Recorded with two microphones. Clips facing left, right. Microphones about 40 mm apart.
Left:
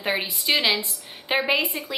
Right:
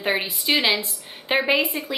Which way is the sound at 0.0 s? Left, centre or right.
Centre.